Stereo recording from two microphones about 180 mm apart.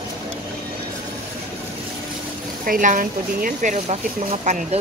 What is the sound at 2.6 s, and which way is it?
Speech, 50° right (ahead or behind).